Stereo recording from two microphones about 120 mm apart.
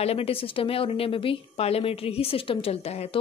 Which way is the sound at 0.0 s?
55° left (ahead or behind).